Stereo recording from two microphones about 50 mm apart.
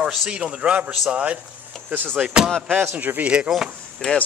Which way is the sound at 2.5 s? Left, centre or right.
Centre.